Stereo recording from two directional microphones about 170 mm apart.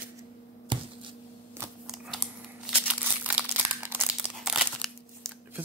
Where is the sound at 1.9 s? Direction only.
5° right (ahead or behind).